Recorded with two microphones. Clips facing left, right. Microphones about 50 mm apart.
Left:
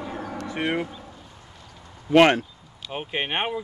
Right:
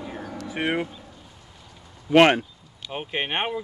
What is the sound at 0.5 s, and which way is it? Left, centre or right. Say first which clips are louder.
Speech: right 1 dB; centre.